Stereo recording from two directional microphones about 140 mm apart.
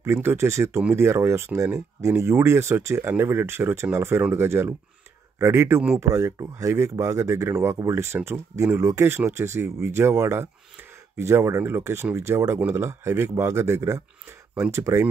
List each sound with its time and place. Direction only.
0.0 s speech: 15° right (ahead or behind)